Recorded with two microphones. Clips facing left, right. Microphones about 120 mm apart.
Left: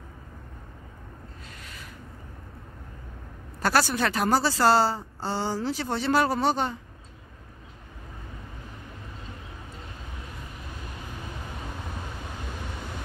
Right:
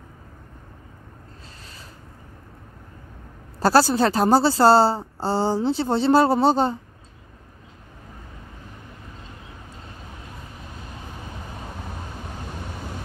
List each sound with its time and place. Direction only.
3.5 s a woman's voice: 30° right (ahead or behind)